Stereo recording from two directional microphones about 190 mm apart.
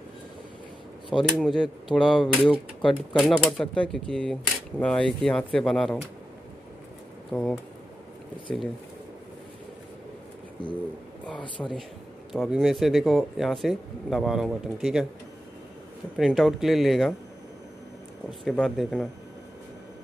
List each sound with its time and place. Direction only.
1.1 s speech: 5° left (ahead or behind)
7.2 s speech: centre (ahead or behind)
11.3 s speech: 25° left (ahead or behind)
12.3 s speech: centre (ahead or behind)
16.2 s speech: centre (ahead or behind)
18.4 s speech: centre (ahead or behind)